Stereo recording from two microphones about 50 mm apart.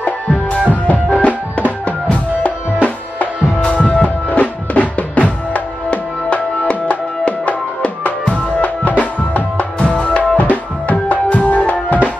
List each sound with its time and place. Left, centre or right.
0.0 s music: left